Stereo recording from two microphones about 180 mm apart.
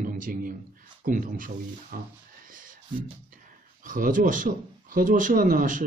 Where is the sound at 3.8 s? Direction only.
50° right (ahead or behind).